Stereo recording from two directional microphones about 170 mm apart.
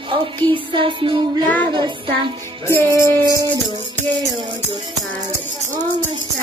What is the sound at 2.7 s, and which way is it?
Music, 15° left (ahead or behind).